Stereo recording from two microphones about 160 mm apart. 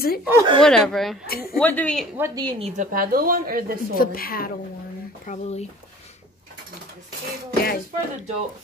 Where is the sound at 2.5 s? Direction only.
45° right (ahead or behind); by 3.7 s 65° right (ahead or behind).